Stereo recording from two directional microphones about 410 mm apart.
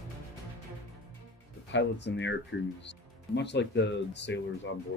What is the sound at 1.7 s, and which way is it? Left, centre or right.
Speech, left.